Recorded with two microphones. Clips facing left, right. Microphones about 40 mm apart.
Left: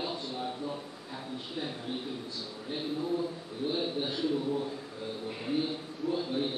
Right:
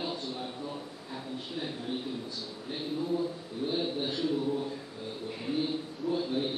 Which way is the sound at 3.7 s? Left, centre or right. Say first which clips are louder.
Right 1 dB; centre.